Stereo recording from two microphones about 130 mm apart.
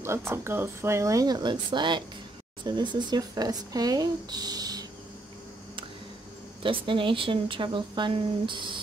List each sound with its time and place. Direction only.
0.0 s speech: 20° right (ahead or behind)
6.6 s speech: 40° right (ahead or behind)